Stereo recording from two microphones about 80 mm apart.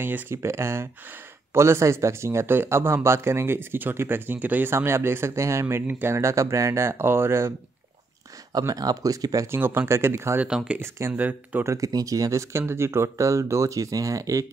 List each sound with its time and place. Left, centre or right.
0.0 s speech: right
6.1 s speech: right
8.5 s speech: right
9.5 s speech: right
10.4 s speech: centre
10.8 s speech: right
11.1 s speech: right
11.6 s speech: right